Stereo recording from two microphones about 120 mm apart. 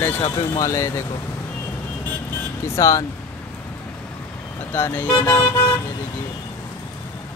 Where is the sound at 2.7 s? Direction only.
25° left (ahead or behind).